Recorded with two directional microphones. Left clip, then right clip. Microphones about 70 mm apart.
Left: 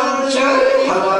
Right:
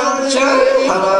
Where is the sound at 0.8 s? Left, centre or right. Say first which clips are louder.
Right 2 dB; right.